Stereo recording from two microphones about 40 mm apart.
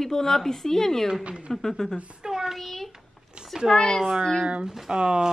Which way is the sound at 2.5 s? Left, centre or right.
Centre.